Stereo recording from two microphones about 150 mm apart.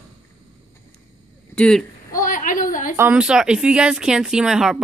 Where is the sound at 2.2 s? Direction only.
60° left (ahead or behind).